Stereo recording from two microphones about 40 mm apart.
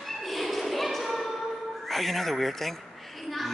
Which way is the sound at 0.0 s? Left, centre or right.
Centre.